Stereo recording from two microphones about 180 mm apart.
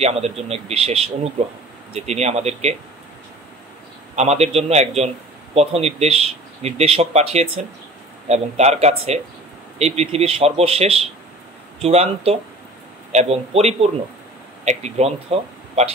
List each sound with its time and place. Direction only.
0.0 s a man's voice: 35° right (ahead or behind)
4.1 s a man's voice: 35° right (ahead or behind)